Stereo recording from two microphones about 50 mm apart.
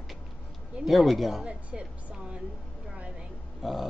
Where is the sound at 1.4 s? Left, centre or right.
Right.